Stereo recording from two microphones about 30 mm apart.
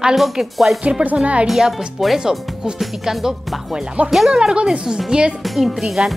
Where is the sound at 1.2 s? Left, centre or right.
Right.